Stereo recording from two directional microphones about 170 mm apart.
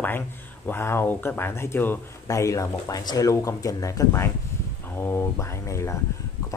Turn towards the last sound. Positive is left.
turn(degrees=15)  # may be behind; listen again after turning